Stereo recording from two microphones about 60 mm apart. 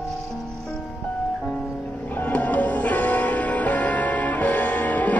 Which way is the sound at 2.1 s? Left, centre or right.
Left.